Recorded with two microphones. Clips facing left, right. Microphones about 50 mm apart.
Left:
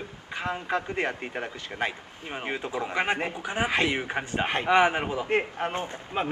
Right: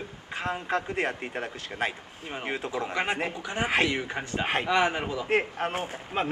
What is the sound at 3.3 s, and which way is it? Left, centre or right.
A man's voice, left.